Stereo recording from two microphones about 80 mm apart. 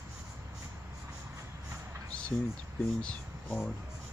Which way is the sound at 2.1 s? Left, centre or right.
Centre.